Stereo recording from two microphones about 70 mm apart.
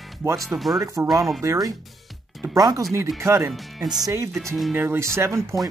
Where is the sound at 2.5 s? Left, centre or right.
Right.